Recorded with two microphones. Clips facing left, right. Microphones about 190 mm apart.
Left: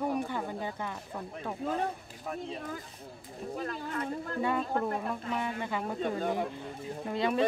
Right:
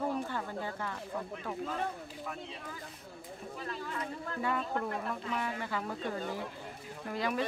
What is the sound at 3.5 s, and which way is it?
Speech, 45° left (ahead or behind).